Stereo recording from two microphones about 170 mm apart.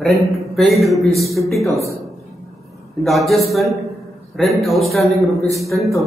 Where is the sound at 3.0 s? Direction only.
Centre (ahead or behind).